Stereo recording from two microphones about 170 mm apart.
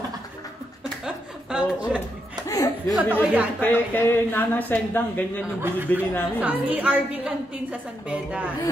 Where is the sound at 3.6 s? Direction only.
10° left (ahead or behind).